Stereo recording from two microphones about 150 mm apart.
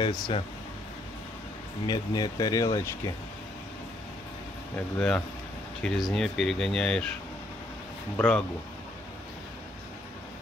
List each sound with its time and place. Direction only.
0.0 s speech: 30° left (ahead or behind)
1.9 s speech: 30° left (ahead or behind)
4.7 s speech: 10° left (ahead or behind)
8.2 s speech: 10° left (ahead or behind)